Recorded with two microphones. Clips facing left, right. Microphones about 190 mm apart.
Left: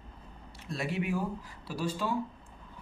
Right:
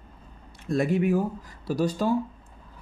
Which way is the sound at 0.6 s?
45° right (ahead or behind).